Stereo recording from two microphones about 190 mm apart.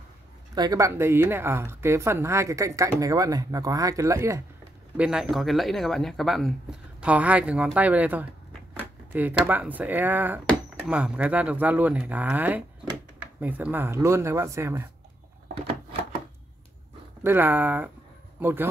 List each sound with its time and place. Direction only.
0.6 s speech: 20° right (ahead or behind)
4.9 s speech: 5° right (ahead or behind)
17.2 s speech: 10° right (ahead or behind)